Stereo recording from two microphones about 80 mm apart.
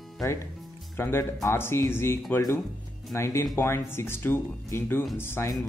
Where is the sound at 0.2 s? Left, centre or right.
Left.